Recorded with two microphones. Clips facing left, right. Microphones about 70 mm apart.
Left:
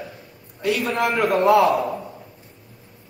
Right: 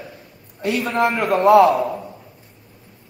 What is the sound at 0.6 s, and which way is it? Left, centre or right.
A man's voice, right.